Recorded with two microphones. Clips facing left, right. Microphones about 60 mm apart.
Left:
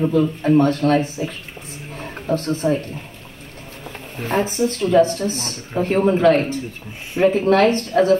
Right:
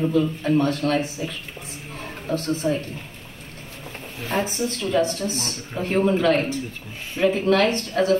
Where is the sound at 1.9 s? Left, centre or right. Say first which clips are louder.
Left 4 dB; left.